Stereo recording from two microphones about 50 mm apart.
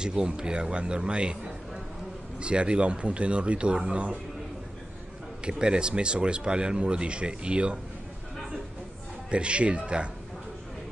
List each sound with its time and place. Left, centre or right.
0.0 s speech: centre
5.4 s speech: centre
9.3 s speech: right